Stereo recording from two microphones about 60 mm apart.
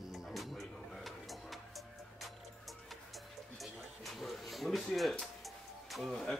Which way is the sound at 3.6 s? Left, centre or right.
Centre.